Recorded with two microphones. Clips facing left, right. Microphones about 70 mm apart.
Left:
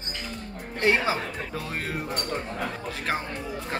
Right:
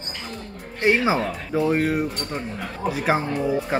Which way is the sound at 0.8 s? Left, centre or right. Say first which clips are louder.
Right 4 dB; centre.